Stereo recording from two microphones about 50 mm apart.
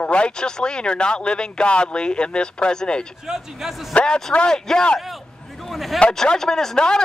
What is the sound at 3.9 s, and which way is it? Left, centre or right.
Speech, left.